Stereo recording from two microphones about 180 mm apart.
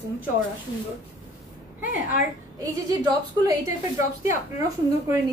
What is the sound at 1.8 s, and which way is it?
Speech, 50° left (ahead or behind).